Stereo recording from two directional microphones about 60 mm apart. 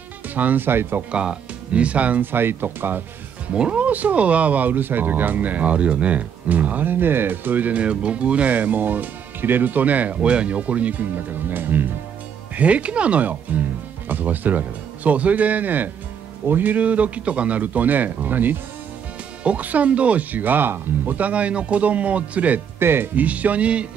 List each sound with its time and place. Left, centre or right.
0.3 s speech: right
1.1 s speech: centre
2.3 s speech: right
3.5 s speech: centre; by 11.9 s right
12.5 s speech: right
22.8 s speech: right
23.2 s speech: right